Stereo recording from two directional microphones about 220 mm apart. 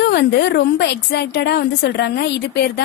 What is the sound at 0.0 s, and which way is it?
A woman's voice, 50° left (ahead or behind).